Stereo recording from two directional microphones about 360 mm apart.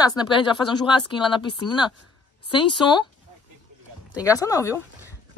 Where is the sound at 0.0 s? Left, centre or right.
Centre.